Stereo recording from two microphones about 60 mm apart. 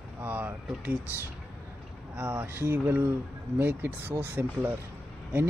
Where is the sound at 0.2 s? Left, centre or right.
Right.